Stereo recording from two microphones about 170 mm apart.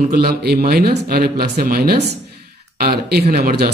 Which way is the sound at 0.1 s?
70° right (ahead or behind).